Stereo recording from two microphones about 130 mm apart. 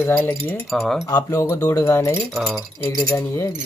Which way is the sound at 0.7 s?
Centre (ahead or behind).